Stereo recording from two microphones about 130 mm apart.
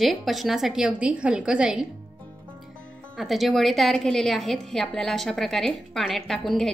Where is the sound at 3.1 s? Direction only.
Centre (ahead or behind).